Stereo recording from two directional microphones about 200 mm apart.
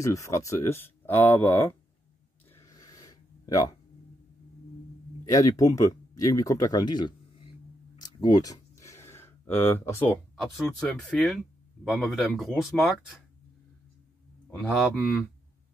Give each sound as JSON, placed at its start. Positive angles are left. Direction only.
{"t": 0.0, "sound": "speech", "side_deg": 15}
{"t": 2.5, "sound": "a sound", "side_deg": 15}
{"t": 5.2, "sound": "speech", "side_deg": 15}
{"t": 7.9, "sound": "a sound", "side_deg": 20}
{"t": 10.3, "sound": "speech", "side_deg": 0}
{"t": 14.5, "sound": "speech", "side_deg": 0}